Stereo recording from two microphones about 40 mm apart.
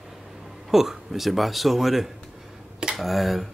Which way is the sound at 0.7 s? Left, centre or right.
Centre.